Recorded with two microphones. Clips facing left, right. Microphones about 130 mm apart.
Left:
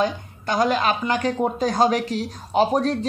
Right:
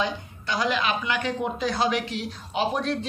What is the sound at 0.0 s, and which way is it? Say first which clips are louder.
A woman's voice: left 5 dB; 45° left (ahead or behind).